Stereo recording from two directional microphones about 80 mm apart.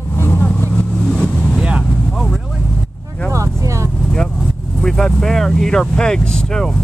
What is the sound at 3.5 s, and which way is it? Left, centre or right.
Vehicle, right.